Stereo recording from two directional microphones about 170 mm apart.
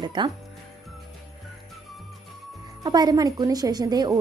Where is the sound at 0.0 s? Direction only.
25° right (ahead or behind).